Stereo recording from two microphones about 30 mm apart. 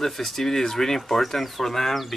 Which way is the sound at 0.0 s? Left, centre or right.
Centre.